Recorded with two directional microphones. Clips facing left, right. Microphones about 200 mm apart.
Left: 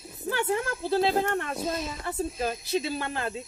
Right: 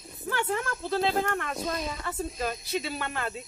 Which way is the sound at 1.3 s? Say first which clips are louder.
Left 2 dB; 25° left (ahead or behind).